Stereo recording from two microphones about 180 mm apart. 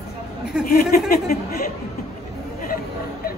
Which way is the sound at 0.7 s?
50° left (ahead or behind).